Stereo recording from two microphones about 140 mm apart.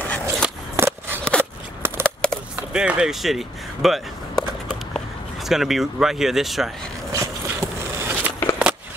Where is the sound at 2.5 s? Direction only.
5° right (ahead or behind).